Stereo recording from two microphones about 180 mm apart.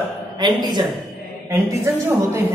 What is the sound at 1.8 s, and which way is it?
Speech, 15° right (ahead or behind).